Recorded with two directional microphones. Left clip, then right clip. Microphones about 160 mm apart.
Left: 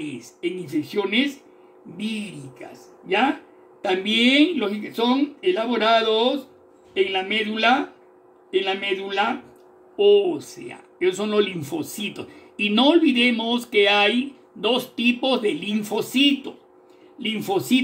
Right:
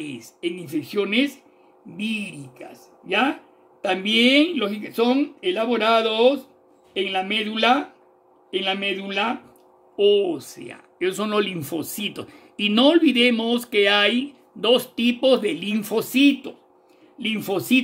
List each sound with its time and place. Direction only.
0.1 s speech: 80° right
3.8 s a man's voice: 75° right (ahead or behind)